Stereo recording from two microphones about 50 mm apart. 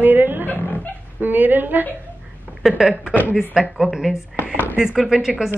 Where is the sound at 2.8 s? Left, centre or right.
Centre.